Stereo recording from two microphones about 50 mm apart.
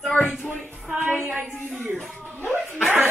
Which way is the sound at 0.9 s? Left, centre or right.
Right.